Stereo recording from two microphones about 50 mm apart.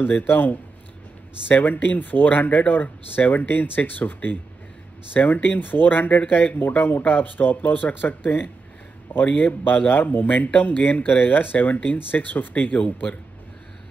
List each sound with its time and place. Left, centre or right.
0.0 s speech: left
9.7 s speech: left